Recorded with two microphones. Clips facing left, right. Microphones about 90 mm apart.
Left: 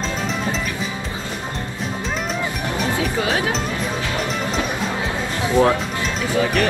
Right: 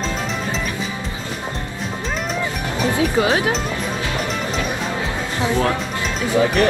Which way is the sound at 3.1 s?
25° right (ahead or behind).